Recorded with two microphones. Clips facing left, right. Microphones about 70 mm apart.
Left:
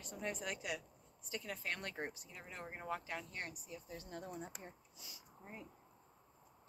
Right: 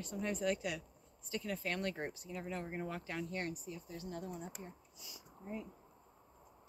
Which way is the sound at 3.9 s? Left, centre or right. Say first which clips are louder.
Right 3 dB; left.